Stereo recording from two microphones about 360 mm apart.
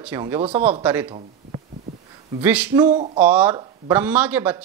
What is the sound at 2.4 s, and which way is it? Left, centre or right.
Speech, centre.